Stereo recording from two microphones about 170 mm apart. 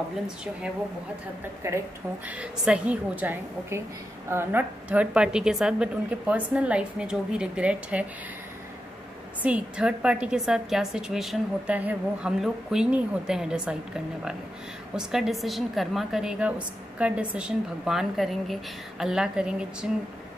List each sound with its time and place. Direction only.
1.6 s a woman's voice: 15° right (ahead or behind)
9.4 s a woman's voice: 5° right (ahead or behind)